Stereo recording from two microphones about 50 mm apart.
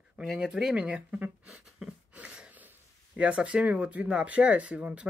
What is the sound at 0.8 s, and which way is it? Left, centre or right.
Speech, right.